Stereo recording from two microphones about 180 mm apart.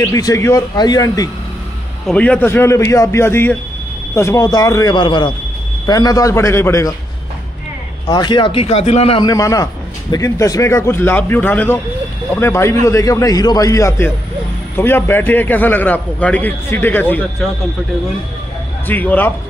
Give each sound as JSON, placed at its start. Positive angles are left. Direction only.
{"t": 0.1, "sound": "a man's voice", "side_deg": 15}
{"t": 2.0, "sound": "a man's voice", "side_deg": 5}
{"t": 8.1, "sound": "speech", "side_deg": 25}
{"t": 9.3, "sound": "a man's voice", "side_deg": 20}
{"t": 18.9, "sound": "a man's voice", "side_deg": 10}